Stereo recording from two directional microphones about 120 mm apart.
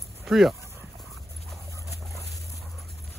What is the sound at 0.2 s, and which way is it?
Speech, centre (ahead or behind).